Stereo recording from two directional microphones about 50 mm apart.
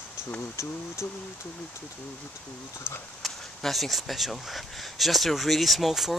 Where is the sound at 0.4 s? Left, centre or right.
Left.